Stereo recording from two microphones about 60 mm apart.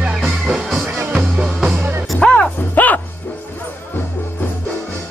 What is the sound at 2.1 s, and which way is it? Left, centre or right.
Music, centre.